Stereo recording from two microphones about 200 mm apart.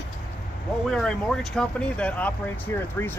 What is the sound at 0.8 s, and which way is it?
Speech, centre (ahead or behind).